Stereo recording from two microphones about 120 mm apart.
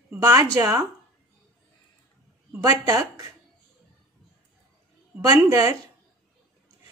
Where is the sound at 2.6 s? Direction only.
30° right (ahead or behind).